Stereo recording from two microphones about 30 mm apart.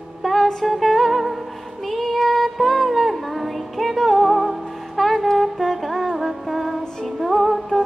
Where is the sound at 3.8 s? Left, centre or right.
Centre.